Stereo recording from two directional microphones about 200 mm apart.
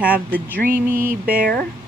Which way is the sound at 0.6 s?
45° right (ahead or behind).